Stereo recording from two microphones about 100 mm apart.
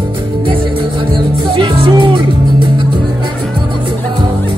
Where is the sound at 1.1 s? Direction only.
55° right (ahead or behind).